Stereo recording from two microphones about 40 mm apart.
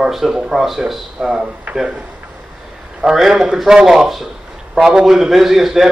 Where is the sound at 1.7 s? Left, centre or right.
Right.